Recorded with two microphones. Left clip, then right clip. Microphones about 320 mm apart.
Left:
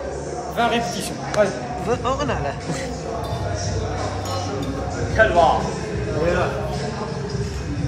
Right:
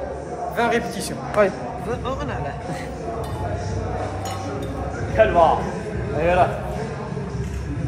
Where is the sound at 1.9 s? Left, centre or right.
Centre.